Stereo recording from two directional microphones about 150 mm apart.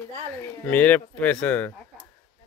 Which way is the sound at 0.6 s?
10° left (ahead or behind).